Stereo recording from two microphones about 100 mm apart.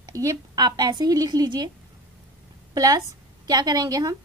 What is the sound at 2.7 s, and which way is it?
A woman's voice, 40° right (ahead or behind).